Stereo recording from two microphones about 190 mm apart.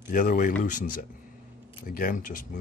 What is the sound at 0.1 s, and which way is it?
Speech, 45° left (ahead or behind).